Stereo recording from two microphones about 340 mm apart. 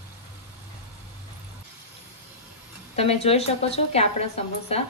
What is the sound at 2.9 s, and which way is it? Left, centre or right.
A woman's voice, centre.